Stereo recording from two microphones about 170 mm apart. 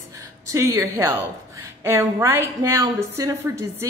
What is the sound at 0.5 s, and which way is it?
A woman's voice, 20° right (ahead or behind).